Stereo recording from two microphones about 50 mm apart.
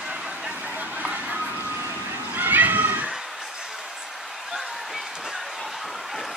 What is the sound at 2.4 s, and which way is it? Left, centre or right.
Children playing, right.